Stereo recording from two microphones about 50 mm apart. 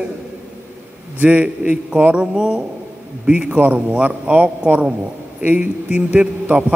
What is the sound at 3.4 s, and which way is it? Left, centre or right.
A man's voice, right.